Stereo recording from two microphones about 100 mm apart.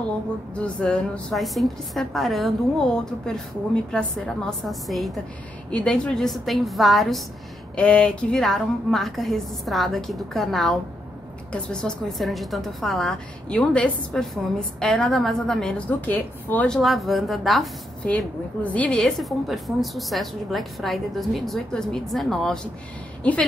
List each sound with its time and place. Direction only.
0.7 s speech: 10° left (ahead or behind)
1.3 s a woman's voice: centre (ahead or behind)
5.7 s a woman's voice: 10° left (ahead or behind)
7.7 s a woman's voice: 10° left (ahead or behind)
16.1 s speech: 15° left (ahead or behind)
16.7 s a woman's voice: centre (ahead or behind)
18.0 s a woman's voice: 15° left (ahead or behind)